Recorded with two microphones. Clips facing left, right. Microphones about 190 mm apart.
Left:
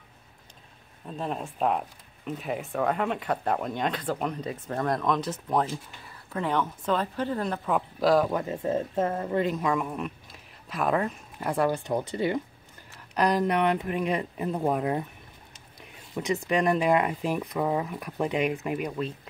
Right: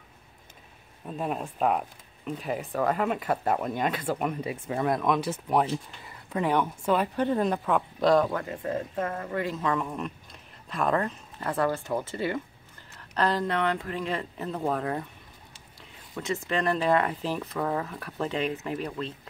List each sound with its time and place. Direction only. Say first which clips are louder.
1.0 s speech: right 1 dB; 10° right (ahead or behind)
7.6 s speech: even; centre (ahead or behind)
8.3 s speech: left 3 dB; 20° left (ahead or behind)
16.2 s speech: left 3 dB; 15° left (ahead or behind)